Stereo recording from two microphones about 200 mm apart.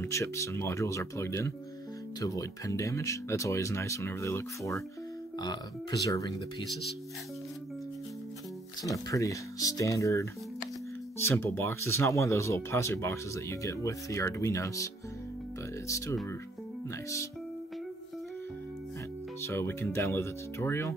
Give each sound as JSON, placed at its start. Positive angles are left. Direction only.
{"t": 0.0, "sound": "speech", "side_deg": 15}
{"t": 8.8, "sound": "speech", "side_deg": 15}
{"t": 15.9, "sound": "speech", "side_deg": 15}
{"t": 19.4, "sound": "speech", "side_deg": 10}